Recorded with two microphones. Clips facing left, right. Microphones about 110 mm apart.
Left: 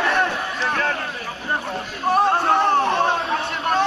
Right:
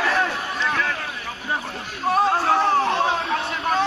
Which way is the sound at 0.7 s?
45° left (ahead or behind).